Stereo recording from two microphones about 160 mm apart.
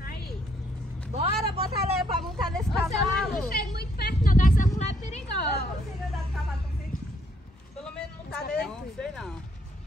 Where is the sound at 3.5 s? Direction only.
75° left (ahead or behind); by 4.7 s 55° left (ahead or behind).